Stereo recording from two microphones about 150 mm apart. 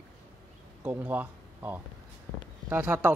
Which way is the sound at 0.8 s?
10° right (ahead or behind).